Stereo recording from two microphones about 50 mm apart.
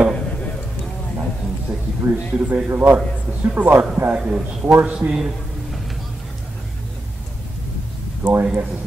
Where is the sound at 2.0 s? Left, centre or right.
Right.